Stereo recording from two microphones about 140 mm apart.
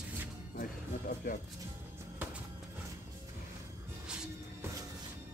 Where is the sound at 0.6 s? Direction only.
80° left.